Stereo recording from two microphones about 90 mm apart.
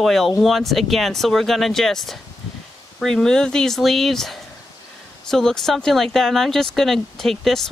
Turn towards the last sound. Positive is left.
turn(degrees=5)  # may be behind; listen again after turning